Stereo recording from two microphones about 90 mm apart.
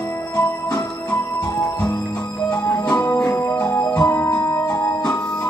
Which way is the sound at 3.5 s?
40° left (ahead or behind).